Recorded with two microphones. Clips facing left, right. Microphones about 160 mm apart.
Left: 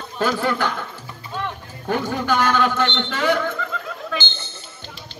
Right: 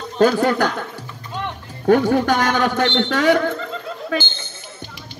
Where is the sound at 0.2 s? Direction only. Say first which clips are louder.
Right 6 dB; 45° right (ahead or behind).